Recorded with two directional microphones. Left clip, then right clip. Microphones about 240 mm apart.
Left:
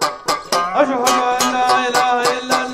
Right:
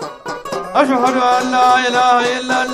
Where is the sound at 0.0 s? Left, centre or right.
Centre.